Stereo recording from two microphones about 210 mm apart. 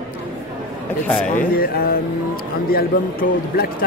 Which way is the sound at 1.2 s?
45° left (ahead or behind).